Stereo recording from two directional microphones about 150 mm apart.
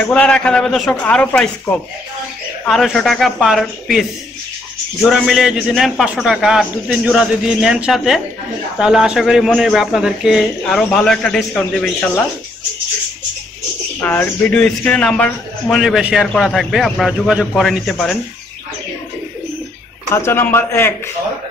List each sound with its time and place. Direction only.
0.0 s a man's voice: 5° left (ahead or behind)
5.1 s a man's voice: centre (ahead or behind)
14.0 s a man's voice: 10° left (ahead or behind)
15.7 s a man's voice: centre (ahead or behind)
20.1 s a man's voice: 15° left (ahead or behind)